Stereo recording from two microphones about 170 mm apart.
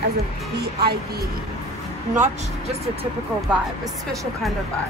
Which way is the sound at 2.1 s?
40° right (ahead or behind).